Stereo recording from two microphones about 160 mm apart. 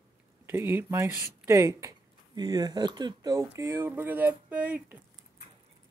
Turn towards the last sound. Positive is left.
turn(degrees=-10)  # may be behind; listen again after turning